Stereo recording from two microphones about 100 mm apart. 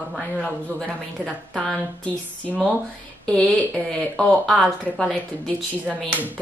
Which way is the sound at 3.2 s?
10° left (ahead or behind).